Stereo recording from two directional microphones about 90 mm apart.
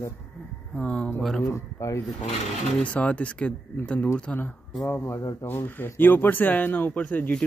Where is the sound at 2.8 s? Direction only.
15° left (ahead or behind).